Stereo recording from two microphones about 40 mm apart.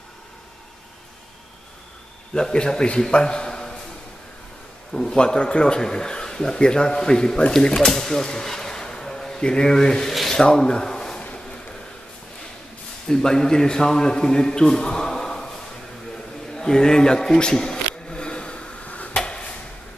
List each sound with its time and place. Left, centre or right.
2.3 s a man's voice: centre
4.9 s a man's voice: centre
10.3 s a sound: centre
13.1 s a man's voice: centre
16.5 s camera: centre
19.1 s a sound: left